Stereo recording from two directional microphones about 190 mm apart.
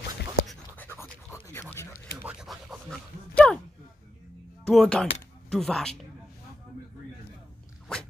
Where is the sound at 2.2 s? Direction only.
5° right (ahead or behind).